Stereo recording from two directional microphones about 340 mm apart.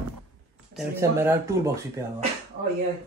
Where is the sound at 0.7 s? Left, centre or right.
Centre.